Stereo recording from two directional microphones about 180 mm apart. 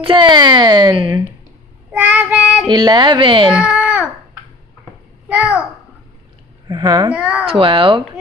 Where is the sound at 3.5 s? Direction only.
5° right (ahead or behind).